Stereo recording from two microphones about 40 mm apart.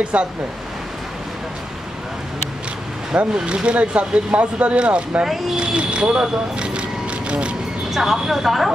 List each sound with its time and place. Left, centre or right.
0.0 s speech: right
3.1 s speech: right
5.2 s speech: centre
5.6 s a sound: right
7.9 s speech: centre